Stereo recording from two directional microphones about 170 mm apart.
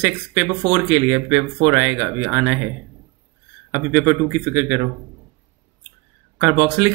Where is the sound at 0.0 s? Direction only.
10° right (ahead or behind).